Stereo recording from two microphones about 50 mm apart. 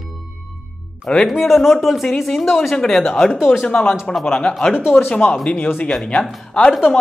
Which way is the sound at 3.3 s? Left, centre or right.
Centre.